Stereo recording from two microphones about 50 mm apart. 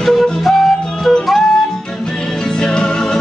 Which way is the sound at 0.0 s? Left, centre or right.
Centre.